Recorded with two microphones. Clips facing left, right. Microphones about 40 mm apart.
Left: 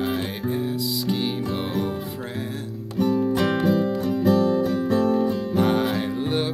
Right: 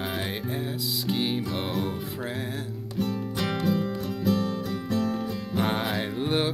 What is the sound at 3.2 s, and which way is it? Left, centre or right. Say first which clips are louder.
Music: left 7 dB; left.